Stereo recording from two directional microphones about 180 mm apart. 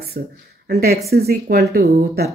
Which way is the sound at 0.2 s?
55° right (ahead or behind).